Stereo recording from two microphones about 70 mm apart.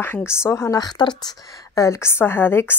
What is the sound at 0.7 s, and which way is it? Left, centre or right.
Speech, left.